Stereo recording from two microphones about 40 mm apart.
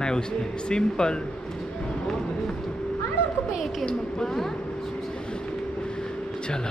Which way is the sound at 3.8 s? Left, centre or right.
Left.